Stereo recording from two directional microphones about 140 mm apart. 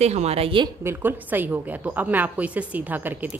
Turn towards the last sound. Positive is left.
turn(degrees=-10)  # may be behind; listen again after turning